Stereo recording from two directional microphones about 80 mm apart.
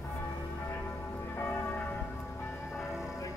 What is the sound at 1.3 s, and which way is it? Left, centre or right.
Church bell, left.